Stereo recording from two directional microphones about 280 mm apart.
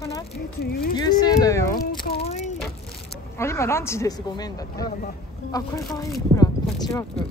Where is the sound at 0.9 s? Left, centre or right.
Centre.